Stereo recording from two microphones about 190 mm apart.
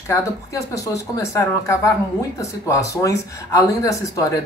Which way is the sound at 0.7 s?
15° left (ahead or behind).